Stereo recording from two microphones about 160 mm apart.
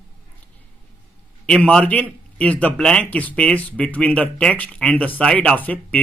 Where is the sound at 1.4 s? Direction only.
5° left (ahead or behind).